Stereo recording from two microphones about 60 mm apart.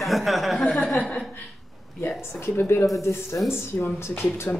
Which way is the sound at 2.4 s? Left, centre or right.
Left.